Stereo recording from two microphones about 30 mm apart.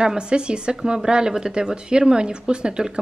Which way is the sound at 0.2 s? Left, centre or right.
Right.